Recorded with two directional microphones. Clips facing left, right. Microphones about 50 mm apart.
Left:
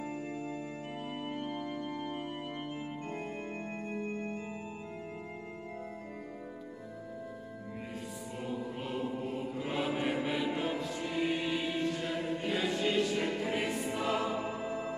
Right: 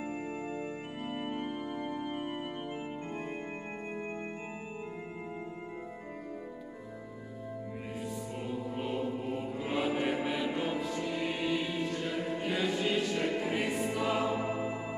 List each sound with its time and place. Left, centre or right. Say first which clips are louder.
1.3 s organ: right 1 dB; right
4.0 s music: left 3 dB; right
8.7 s music: right 2 dB; centre